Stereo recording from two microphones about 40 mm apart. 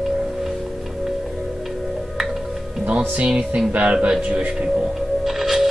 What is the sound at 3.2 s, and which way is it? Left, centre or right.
Music, right.